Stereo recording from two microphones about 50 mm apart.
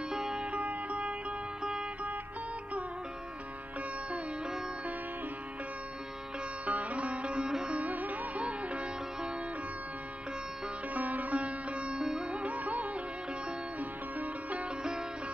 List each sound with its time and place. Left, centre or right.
0.1 s music: centre
1.6 s music: centre
6.6 s sitar: right
7.5 s music: centre
7.8 s music: right
11.0 s sitar: right
12.0 s music: centre
12.3 s music: right
13.7 s sitar: right